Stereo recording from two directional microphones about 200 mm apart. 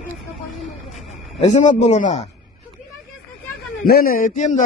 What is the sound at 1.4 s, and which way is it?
Speech, 35° left (ahead or behind).